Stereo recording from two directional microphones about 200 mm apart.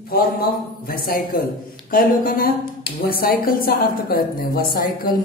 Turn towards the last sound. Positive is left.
turn(degrees=45)  # may be behind; listen again after turning